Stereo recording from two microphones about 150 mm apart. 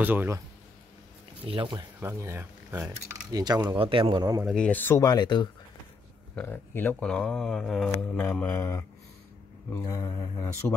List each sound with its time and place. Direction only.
0.0 s speech: 15° right (ahead or behind)
1.4 s a man's voice: 35° right (ahead or behind)
2.0 s speech: 15° right (ahead or behind)
3.3 s a man's voice: 25° right (ahead or behind)
4.5 s speech: 10° left (ahead or behind)
5.0 s mantra: 30° left (ahead or behind)
6.3 s speech: 15° left (ahead or behind)
9.8 s mantra: 25° left (ahead or behind)